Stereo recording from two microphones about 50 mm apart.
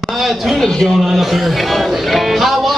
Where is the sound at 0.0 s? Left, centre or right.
Centre.